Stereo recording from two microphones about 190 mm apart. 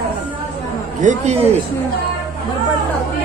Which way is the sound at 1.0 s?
40° right (ahead or behind).